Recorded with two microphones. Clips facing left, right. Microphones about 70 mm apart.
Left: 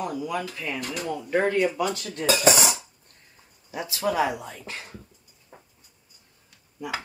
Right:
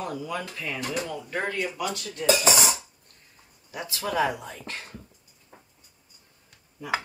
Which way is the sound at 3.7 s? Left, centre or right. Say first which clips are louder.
Left 3 dB; centre.